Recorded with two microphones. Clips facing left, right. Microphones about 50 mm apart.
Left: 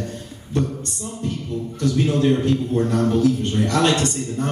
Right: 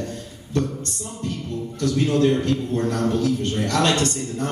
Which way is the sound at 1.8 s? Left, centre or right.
Left.